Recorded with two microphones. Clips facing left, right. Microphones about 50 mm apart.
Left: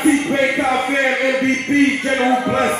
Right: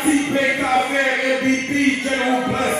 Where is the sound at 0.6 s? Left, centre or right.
Left.